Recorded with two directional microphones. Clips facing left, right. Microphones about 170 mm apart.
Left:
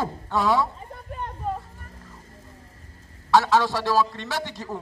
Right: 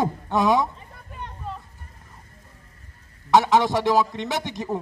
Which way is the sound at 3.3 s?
20° right (ahead or behind).